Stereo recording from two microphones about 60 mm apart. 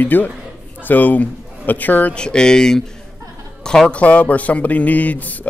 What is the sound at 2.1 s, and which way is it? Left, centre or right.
Speech, centre.